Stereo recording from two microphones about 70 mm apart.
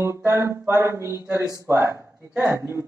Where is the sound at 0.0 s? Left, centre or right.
Right.